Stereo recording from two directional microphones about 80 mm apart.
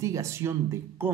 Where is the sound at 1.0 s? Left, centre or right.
Right.